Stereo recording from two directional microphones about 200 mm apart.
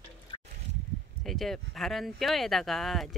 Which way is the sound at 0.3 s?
25° left (ahead or behind).